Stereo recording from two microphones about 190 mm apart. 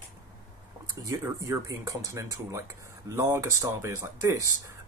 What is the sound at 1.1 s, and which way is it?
Speech, 15° right (ahead or behind).